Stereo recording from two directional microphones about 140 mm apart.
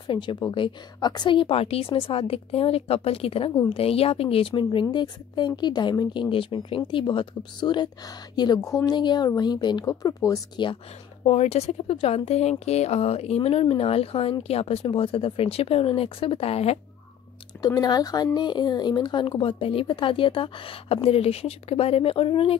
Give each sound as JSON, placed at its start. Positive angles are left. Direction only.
{"t": 0.0, "sound": "speech", "side_deg": 35}
{"t": 11.2, "sound": "speech", "side_deg": 50}
{"t": 17.6, "sound": "speech", "side_deg": 30}